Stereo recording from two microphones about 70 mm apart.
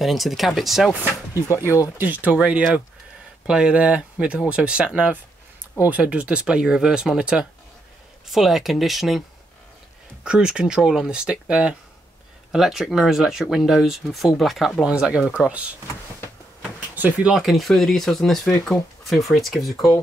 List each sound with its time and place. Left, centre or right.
0.0 s speech: centre
2.0 s speech: right
2.3 s speech: centre
10.2 s speech: centre
17.2 s speech: centre